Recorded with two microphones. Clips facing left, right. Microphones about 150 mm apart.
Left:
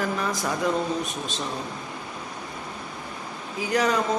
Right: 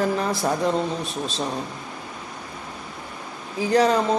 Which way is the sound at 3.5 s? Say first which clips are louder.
Right 5 dB; 30° right (ahead or behind).